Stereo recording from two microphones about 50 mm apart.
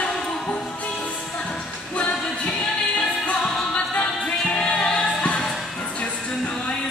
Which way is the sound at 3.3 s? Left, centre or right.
Centre.